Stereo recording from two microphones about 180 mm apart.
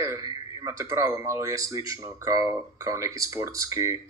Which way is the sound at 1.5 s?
20° right (ahead or behind).